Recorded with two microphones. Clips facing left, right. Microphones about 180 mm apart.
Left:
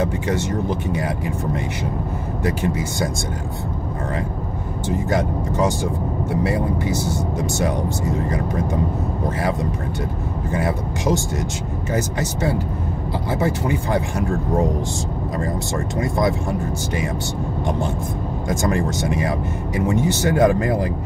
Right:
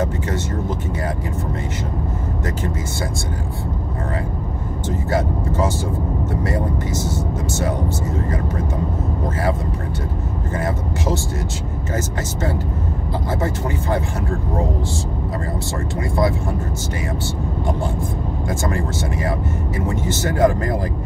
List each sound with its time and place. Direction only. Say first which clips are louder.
0.0 s speech: left 1 dB; 15° left (ahead or behind)
4.8 s speech: even; 15° left (ahead or behind)
10.5 s speech: left 1 dB; 15° left (ahead or behind)
16.0 s speech: even; 20° left (ahead or behind)
18.5 s speech: left 4 dB; 20° left (ahead or behind)